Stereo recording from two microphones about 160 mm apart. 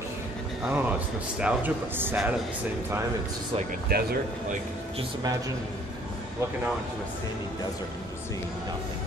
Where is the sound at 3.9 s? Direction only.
75° right (ahead or behind).